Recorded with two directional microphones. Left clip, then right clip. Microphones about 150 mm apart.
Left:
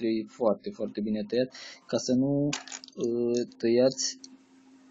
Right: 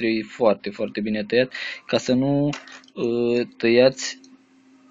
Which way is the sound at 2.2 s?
25° right (ahead or behind).